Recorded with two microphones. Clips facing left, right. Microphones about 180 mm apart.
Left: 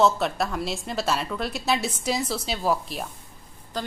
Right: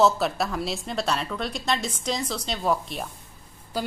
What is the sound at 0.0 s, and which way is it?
Speech, centre (ahead or behind).